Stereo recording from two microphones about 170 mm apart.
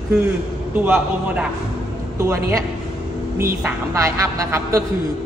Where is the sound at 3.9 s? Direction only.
15° right (ahead or behind).